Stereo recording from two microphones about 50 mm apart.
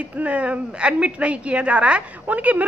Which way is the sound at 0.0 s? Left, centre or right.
Right.